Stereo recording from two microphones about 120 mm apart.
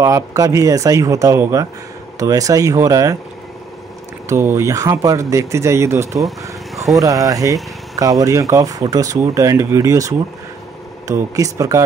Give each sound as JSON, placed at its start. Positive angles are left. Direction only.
{"t": 0.0, "sound": "speech", "side_deg": -25}
{"t": 4.3, "sound": "speech", "side_deg": -20}